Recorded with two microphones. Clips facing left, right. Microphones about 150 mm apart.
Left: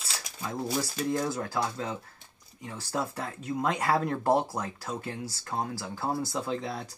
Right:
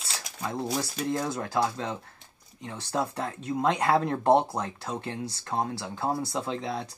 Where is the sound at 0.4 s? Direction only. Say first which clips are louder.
Right 2 dB; 25° right (ahead or behind).